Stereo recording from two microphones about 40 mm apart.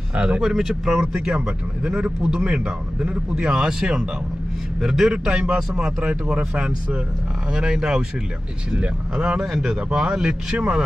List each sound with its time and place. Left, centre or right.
0.1 s speech: right
0.4 s a man's voice: centre